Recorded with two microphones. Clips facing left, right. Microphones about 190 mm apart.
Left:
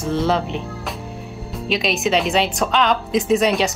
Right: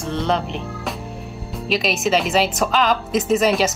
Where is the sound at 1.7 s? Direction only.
Centre (ahead or behind).